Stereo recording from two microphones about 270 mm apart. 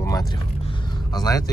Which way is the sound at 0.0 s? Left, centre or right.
Centre.